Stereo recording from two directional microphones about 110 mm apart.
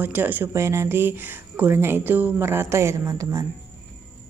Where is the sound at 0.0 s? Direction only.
20° right (ahead or behind).